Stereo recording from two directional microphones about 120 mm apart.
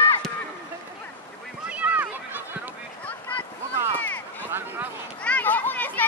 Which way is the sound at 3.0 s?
10° left (ahead or behind).